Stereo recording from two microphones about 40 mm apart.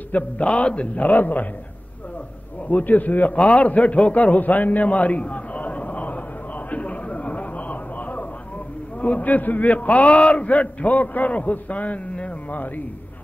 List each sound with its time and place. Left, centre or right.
0.1 s a man's voice: left
2.7 s a man's voice: left
6.7 s a sound: left
9.0 s a man's voice: left